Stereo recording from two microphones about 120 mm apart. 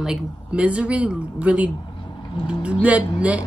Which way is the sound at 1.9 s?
45° left (ahead or behind).